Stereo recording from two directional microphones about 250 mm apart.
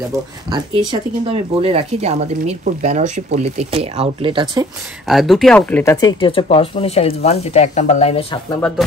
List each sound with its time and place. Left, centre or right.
0.5 s speech: centre
5.0 s speech: centre; by 8.4 s left
8.5 s speech: centre